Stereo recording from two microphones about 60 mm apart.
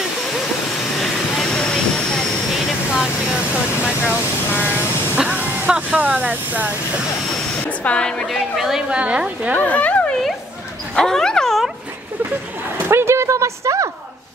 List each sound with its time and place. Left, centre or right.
1.0 s vehicle: centre
3.0 s a sound: centre
4.0 s vehicle: left
5.1 s a sound: right
5.9 s speech: right
7.8 s a woman's voice: centre
8.3 s speech: centre
8.9 s speech: centre
9.6 s a sound: left
11.0 s dog: centre
12.7 s speech: right